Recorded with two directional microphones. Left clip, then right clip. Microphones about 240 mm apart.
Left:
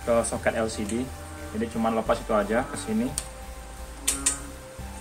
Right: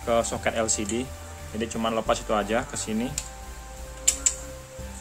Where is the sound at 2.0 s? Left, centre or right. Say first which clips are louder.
Even; right.